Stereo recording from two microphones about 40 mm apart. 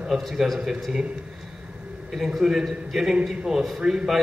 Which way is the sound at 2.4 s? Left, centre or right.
Centre.